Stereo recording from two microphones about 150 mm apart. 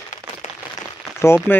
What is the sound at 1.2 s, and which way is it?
Speech, 15° left (ahead or behind).